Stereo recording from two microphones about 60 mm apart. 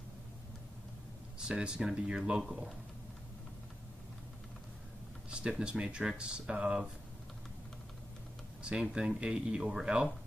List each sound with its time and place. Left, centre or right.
1.5 s speech: centre
5.3 s speech: centre
8.6 s speech: centre